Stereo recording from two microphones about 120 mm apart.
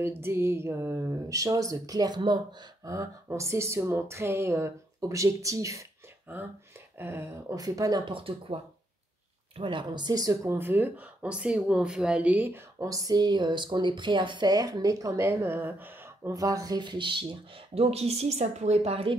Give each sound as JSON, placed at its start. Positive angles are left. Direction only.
{"t": 0.0, "sound": "speech", "side_deg": -20}
{"t": 2.8, "sound": "speech", "side_deg": -25}
{"t": 7.0, "sound": "speech", "side_deg": -20}
{"t": 8.1, "sound": "speech", "side_deg": -50}
{"t": 9.6, "sound": "speech", "side_deg": -45}
{"t": 10.5, "sound": "speech", "side_deg": -15}
{"t": 12.8, "sound": "speech", "side_deg": -30}
{"t": 15.2, "sound": "speech", "side_deg": -20}
{"t": 16.3, "sound": "speech", "side_deg": -30}